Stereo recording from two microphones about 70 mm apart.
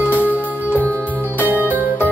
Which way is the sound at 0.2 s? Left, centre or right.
Right.